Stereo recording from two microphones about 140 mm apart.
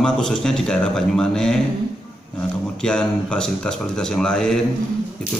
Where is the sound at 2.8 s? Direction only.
5° left (ahead or behind).